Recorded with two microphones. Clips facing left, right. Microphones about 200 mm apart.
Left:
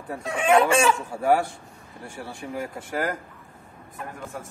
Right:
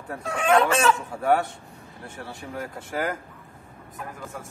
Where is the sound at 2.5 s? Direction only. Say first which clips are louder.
Left 1 dB; 5° left (ahead or behind).